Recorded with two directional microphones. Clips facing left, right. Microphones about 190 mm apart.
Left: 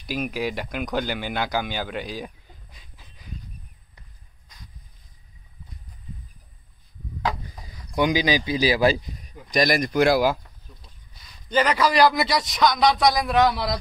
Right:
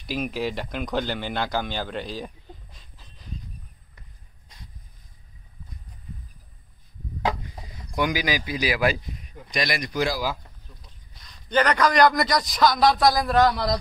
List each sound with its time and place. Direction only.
0.0 s speech: 5° left (ahead or behind)
7.2 s a sound: 25° right (ahead or behind)
7.9 s speech: 20° left (ahead or behind); by 10.3 s 60° left (ahead or behind)
11.1 s a man's voice: 5° left (ahead or behind)